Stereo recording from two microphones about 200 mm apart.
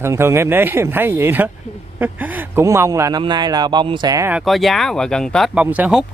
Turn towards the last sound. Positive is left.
turn(degrees=-5)  # may be behind; listen again after turning